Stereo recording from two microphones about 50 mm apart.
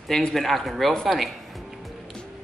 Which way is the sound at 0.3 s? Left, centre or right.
Centre.